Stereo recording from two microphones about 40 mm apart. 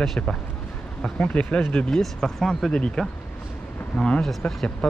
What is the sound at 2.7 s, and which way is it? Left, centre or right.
Speech, left.